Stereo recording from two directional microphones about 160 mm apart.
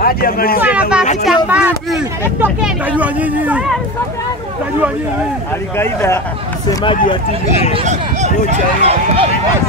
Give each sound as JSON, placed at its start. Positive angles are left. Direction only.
{"t": 0.0, "sound": "speech", "side_deg": 70}
{"t": 0.6, "sound": "speech", "side_deg": -10}
{"t": 5.8, "sound": "speech", "side_deg": 15}
{"t": 6.7, "sound": "speech", "side_deg": 30}
{"t": 7.7, "sound": "speech", "side_deg": -45}